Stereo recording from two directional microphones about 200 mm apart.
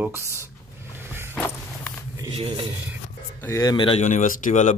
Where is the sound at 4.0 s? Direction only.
40° left (ahead or behind).